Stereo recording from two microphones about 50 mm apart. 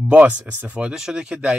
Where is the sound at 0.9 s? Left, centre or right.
Centre.